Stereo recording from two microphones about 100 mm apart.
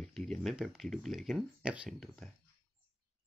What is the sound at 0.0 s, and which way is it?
Speech, 5° left (ahead or behind).